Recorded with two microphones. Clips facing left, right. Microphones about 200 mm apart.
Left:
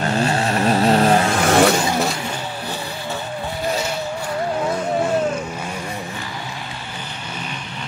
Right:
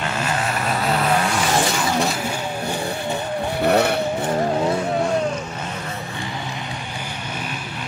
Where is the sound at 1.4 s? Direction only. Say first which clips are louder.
Left 6 dB; 65° left (ahead or behind).